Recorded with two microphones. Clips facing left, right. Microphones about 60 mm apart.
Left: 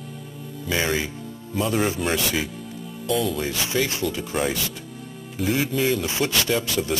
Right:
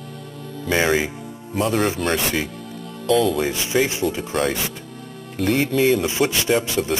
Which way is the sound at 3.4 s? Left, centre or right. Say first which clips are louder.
Right 4 dB; right.